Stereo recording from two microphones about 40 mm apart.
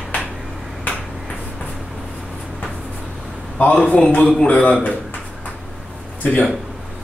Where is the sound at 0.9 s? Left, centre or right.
Left.